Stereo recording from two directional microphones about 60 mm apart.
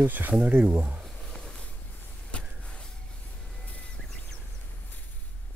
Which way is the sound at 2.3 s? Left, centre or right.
Centre.